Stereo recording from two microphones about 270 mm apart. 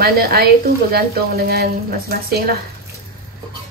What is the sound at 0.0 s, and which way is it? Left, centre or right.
A woman's voice, right.